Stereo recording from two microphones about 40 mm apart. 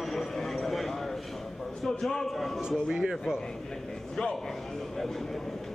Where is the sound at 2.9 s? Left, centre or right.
Centre.